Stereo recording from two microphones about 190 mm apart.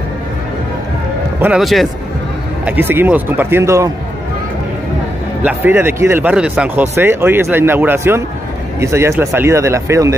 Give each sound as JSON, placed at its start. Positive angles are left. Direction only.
{"t": 1.4, "sound": "speech", "side_deg": -5}
{"t": 5.4, "sound": "speech", "side_deg": -10}